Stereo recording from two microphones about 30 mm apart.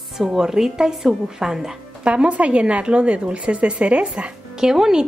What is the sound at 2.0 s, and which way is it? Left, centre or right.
Speech, right.